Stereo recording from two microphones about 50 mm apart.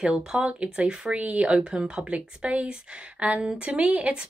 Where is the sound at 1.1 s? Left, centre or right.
Right.